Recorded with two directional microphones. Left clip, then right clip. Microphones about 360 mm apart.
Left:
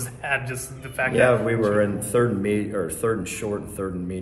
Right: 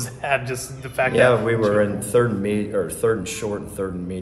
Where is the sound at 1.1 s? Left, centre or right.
Centre.